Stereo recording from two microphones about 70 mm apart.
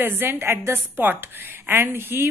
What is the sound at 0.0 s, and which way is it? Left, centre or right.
A woman's voice, right.